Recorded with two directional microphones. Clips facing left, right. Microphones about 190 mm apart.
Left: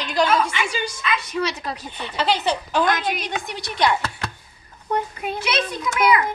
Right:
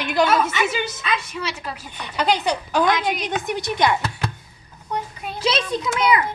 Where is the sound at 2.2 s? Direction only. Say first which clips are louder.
Right 1 dB; 15° right (ahead or behind).